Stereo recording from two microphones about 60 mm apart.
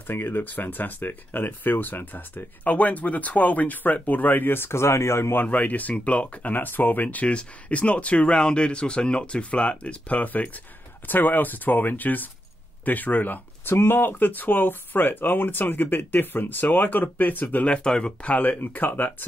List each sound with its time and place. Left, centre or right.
0.0 s speech: left
5.4 s speech: left
17.8 s speech: centre
18.4 s speech: left